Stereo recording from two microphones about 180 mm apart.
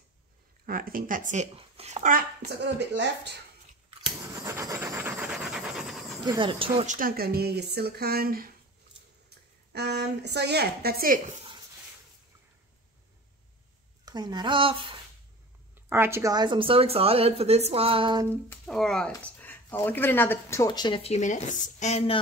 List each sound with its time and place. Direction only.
0.7 s speech: 50° right (ahead or behind)
2.6 s speech: 75° right (ahead or behind)
4.2 s rub: 20° right (ahead or behind); by 6.1 s centre (ahead or behind)
6.2 s a woman's voice: 25° right (ahead or behind)
6.9 s a woman's voice: 55° right (ahead or behind)
14.0 s a woman's voice: 25° right (ahead or behind)
15.7 s speech: 15° right (ahead or behind); by 18.2 s 30° right (ahead or behind)
18.5 s speech: centre (ahead or behind); by 22.2 s 35° left (ahead or behind)